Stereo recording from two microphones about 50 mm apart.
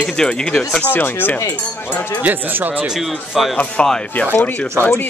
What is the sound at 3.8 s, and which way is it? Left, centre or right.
Speech, centre.